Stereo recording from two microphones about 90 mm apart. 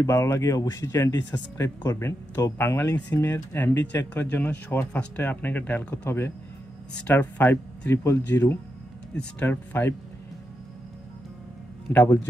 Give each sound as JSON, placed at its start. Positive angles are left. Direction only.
{"t": 0.0, "sound": "speech", "side_deg": 35}
{"t": 9.1, "sound": "speech", "side_deg": 15}